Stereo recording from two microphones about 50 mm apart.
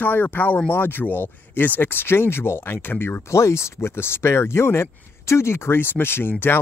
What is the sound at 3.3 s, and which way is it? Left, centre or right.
Speech, left.